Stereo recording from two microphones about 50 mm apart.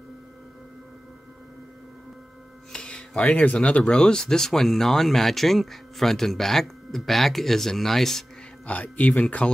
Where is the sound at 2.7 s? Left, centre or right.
Centre.